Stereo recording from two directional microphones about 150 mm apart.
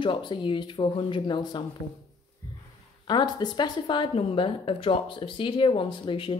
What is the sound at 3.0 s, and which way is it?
A woman's voice, 30° left (ahead or behind).